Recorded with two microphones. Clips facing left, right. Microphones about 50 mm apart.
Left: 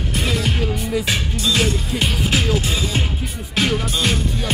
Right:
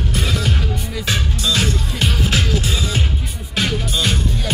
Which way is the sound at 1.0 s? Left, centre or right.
Centre.